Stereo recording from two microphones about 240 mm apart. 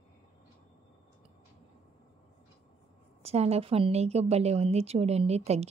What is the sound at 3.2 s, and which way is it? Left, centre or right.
A woman's voice, right.